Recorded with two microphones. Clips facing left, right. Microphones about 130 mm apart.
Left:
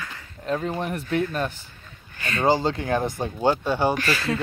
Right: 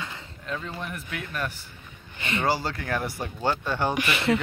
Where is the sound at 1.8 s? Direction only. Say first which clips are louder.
Left 1 dB; 25° right (ahead or behind).